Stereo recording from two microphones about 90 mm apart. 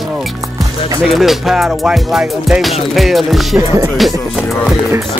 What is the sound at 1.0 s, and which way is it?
Music, centre (ahead or behind).